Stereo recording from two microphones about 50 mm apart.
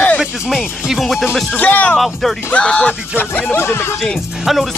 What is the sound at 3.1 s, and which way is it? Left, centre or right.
Speech, left.